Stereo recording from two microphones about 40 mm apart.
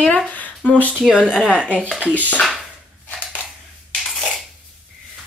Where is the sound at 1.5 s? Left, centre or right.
Right.